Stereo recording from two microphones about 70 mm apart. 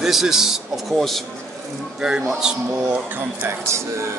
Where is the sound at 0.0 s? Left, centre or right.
Centre.